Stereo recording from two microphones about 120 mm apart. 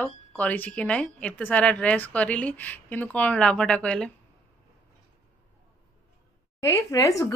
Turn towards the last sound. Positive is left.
turn(degrees=30)  # may be behind; listen again after turning